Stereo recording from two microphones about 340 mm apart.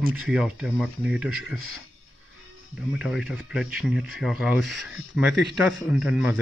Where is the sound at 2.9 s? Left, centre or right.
Centre.